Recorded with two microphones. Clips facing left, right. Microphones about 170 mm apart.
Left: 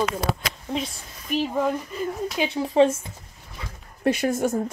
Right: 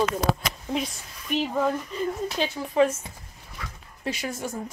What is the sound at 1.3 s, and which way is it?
Speech, 5° left (ahead or behind).